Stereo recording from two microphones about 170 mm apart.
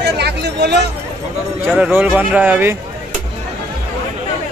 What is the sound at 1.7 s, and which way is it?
Speech, 5° right (ahead or behind).